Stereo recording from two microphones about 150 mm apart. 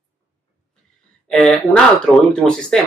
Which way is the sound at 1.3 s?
5° left (ahead or behind).